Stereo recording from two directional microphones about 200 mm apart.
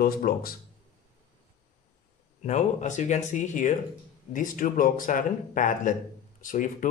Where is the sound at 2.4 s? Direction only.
35° left (ahead or behind).